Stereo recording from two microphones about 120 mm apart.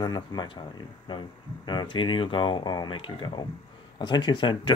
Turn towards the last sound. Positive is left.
turn(degrees=45)  # may be behind; listen again after turning